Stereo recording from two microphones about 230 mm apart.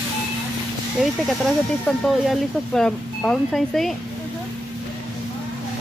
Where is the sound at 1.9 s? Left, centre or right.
Centre.